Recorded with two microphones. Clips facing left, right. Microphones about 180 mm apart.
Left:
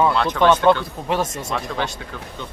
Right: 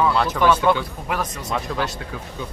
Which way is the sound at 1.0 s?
25° left (ahead or behind).